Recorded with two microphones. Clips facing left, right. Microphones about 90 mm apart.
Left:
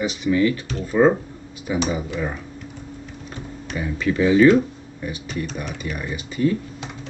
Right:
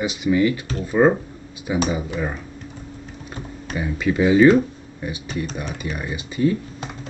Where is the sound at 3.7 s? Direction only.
15° right (ahead or behind).